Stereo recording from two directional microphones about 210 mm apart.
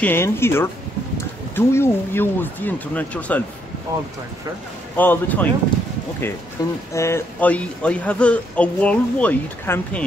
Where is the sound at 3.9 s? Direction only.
15° right (ahead or behind).